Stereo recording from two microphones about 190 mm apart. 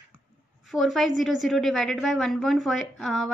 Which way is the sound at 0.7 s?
Centre (ahead or behind).